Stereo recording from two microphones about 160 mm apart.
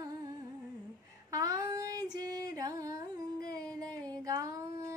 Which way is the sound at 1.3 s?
20° right (ahead or behind).